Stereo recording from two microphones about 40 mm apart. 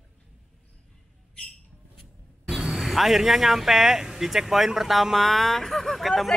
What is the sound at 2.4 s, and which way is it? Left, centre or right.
Vehicle, centre.